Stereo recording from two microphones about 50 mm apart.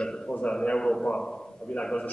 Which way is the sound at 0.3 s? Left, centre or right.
Left.